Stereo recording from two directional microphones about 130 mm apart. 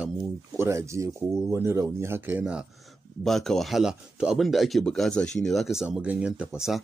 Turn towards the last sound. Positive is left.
turn(degrees=-5)  # may be behind; listen again after turning